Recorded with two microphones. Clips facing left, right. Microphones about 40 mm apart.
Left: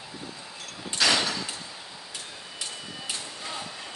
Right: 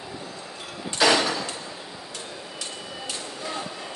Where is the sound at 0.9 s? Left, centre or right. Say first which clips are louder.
Right 4 dB; centre.